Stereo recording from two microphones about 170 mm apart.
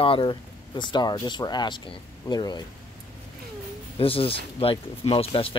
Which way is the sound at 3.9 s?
35° left (ahead or behind).